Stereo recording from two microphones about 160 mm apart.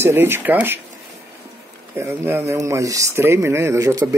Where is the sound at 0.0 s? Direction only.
15° right (ahead or behind).